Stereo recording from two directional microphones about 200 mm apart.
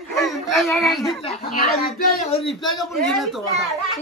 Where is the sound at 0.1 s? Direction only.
Centre (ahead or behind).